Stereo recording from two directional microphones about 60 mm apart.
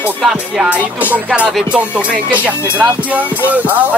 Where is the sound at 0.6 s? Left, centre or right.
Right.